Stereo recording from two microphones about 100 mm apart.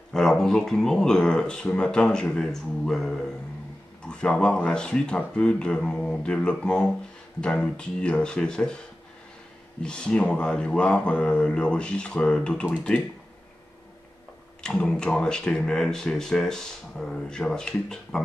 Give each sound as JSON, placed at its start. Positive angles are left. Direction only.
{"t": 0.1, "sound": "speech", "side_deg": 5}
{"t": 9.8, "sound": "speech", "side_deg": 10}
{"t": 14.6, "sound": "speech", "side_deg": 10}